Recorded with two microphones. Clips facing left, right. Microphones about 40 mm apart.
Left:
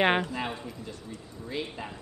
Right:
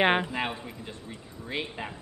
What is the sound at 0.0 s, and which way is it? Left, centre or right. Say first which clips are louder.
Speech: right 1 dB; centre.